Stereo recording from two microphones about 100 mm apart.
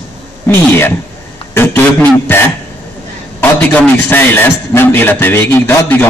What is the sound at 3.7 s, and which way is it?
A man's voice, 20° left (ahead or behind).